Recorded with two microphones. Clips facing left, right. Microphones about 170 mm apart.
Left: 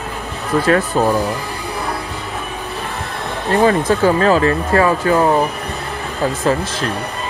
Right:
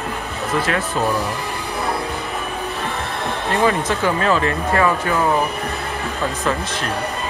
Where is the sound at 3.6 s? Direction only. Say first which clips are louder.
Left 5 dB; 35° left (ahead or behind).